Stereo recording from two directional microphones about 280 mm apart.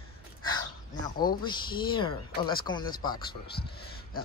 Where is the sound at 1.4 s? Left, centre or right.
Centre.